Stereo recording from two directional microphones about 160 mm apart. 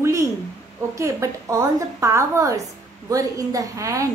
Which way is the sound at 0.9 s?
20° right (ahead or behind).